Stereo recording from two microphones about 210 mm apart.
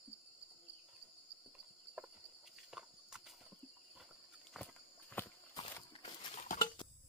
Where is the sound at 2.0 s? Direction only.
5° right (ahead or behind).